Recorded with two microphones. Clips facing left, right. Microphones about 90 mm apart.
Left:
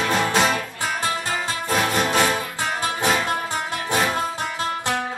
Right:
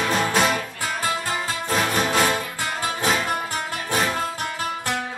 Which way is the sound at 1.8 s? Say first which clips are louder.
Left 1 dB; centre (ahead or behind).